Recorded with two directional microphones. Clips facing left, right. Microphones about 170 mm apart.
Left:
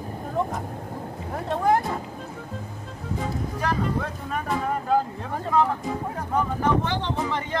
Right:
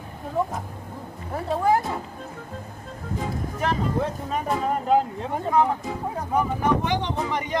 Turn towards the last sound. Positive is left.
turn(degrees=-15)  # may be behind; listen again after turning